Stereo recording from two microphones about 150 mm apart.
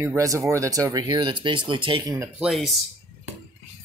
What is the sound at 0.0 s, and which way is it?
Speech, 20° right (ahead or behind).